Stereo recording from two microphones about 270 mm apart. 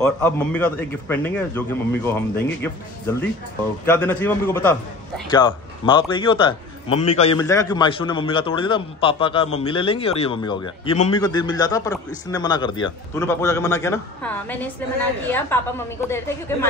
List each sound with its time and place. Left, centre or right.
0.0 s a man's voice: centre
2.6 s a man's voice: centre